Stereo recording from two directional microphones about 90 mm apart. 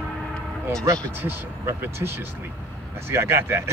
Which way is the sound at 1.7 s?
30° right (ahead or behind).